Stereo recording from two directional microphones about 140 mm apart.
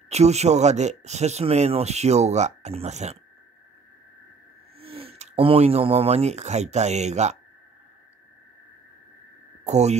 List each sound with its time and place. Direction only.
0.1 s speech: 50° right (ahead or behind)
4.7 s speech: 45° right (ahead or behind)
9.7 s speech: 50° right (ahead or behind)